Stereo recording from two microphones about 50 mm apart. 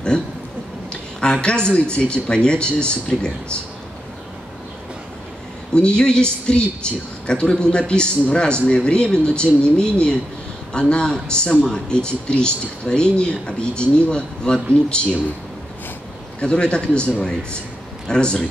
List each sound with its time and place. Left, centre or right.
1.2 s speech: centre
5.8 s speech: centre
16.3 s speech: left